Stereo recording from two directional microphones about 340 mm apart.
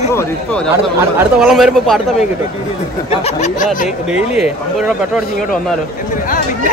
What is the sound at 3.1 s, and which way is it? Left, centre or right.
Speech, centre.